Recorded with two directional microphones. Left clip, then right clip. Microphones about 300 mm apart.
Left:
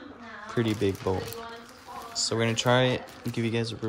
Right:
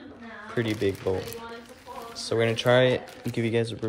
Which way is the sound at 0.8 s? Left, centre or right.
Centre.